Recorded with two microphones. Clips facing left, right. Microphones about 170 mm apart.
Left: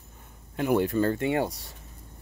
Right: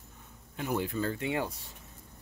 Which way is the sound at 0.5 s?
65° left (ahead or behind).